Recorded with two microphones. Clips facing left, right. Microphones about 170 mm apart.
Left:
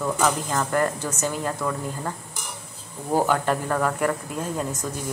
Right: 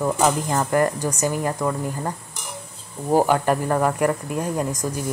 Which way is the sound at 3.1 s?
10° right (ahead or behind).